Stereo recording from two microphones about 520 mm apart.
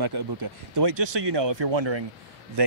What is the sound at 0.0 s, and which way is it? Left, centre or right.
Speech, right.